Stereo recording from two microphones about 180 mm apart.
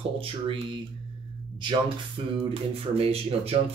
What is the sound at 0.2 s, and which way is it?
Speech, 30° right (ahead or behind).